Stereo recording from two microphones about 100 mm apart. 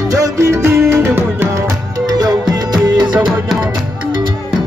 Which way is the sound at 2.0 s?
40° right (ahead or behind).